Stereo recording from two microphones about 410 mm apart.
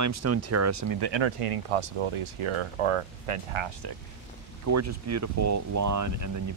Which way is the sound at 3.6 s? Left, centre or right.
Right.